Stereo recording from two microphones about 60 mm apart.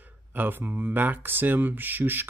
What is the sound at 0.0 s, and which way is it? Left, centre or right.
Speech, right.